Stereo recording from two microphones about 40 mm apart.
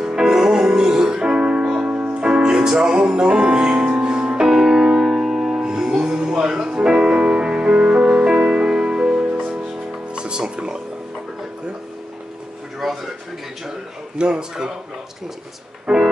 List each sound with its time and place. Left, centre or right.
0.0 s music: centre
1.9 s music: right
2.2 s music: right
7.2 s music: right
12.8 s a sound: centre
14.1 s a sound: right
15.9 s music: centre